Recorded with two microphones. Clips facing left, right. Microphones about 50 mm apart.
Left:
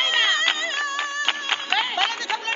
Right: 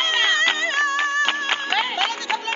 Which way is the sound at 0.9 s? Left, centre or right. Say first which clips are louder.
Right 6 dB; right.